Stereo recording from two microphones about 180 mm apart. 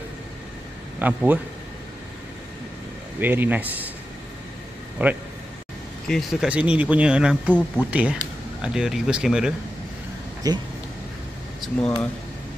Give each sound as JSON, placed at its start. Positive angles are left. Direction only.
{"t": 0.9, "sound": "speech", "side_deg": -10}
{"t": 3.2, "sound": "speech", "side_deg": -10}
{"t": 5.0, "sound": "speech", "side_deg": -10}
{"t": 6.0, "sound": "speech", "side_deg": 0}
{"t": 10.4, "sound": "speech", "side_deg": -20}
{"t": 11.6, "sound": "speech", "side_deg": 5}